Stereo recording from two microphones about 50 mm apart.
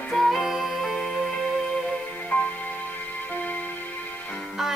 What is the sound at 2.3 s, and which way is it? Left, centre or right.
Music, left.